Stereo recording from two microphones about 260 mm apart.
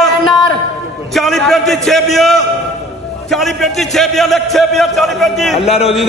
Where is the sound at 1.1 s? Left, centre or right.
Centre.